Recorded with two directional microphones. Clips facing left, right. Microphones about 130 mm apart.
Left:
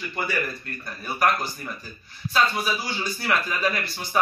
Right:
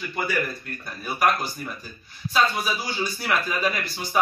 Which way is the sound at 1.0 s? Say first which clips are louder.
Right 1 dB; 5° right (ahead or behind).